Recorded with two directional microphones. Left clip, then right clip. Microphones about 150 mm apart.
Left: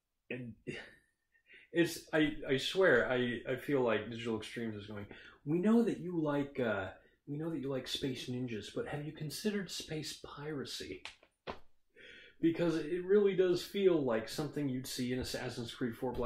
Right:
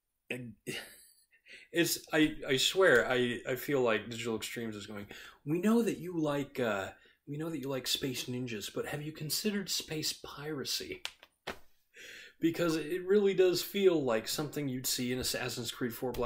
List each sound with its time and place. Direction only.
0.3 s speech: 20° right (ahead or behind)
12.4 s speech: 15° right (ahead or behind)